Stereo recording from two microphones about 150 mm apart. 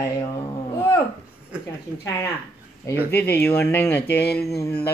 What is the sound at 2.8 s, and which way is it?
Speech, 15° left (ahead or behind).